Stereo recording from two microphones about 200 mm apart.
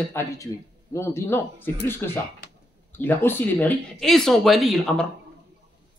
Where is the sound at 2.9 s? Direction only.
10° left (ahead or behind).